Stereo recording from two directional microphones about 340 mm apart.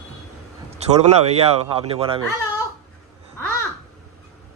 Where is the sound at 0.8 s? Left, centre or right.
Centre.